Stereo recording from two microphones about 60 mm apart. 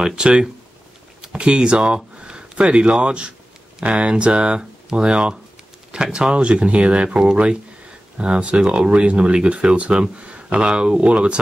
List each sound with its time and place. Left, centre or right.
0.0 s speech: centre